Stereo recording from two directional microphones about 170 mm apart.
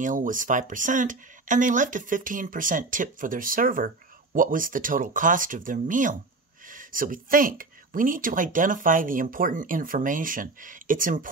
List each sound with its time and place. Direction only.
0.0 s speech: 50° right (ahead or behind)